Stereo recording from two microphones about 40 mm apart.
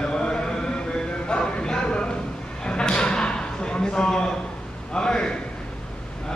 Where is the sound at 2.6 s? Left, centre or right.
Left.